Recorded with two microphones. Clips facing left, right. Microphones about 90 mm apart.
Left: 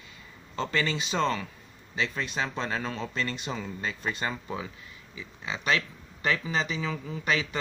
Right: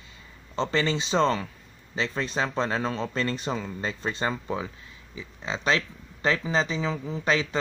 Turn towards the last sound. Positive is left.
turn(degrees=-30)  # may be behind; listen again after turning